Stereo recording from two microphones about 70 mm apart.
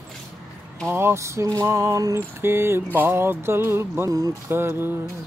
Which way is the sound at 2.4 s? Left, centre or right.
Right.